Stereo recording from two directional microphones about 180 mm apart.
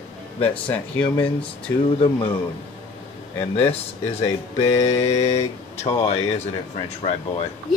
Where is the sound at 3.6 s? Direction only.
35° left (ahead or behind).